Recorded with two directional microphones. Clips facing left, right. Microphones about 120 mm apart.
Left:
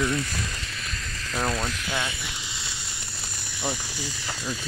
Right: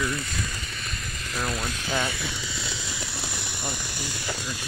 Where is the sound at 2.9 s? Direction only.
85° right.